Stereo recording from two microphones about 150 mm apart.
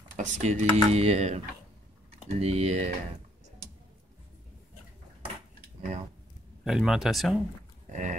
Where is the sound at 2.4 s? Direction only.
45° right (ahead or behind).